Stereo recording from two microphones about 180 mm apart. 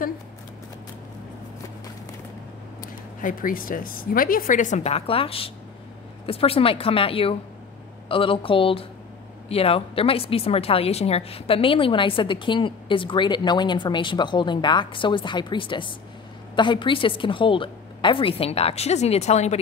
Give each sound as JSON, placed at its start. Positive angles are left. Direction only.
{"t": 2.8, "sound": "a woman's voice", "side_deg": 50}